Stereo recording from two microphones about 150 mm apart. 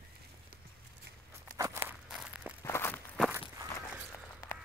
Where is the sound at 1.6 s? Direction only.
20° right (ahead or behind).